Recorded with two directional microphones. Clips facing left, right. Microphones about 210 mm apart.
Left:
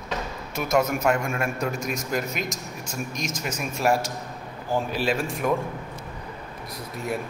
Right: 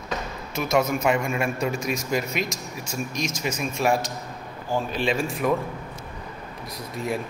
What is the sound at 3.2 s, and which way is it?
A man's voice, centre (ahead or behind).